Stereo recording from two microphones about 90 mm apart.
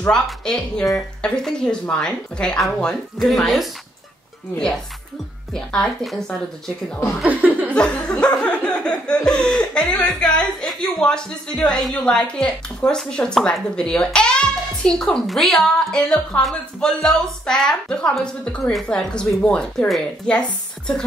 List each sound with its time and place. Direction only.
0.1 s laughter: 10° left (ahead or behind)
5.5 s speech: 5° left (ahead or behind)
7.2 s laughter: 20° right (ahead or behind)
7.7 s laughter: 10° left (ahead or behind)
20.2 s a woman's voice: 10° left (ahead or behind)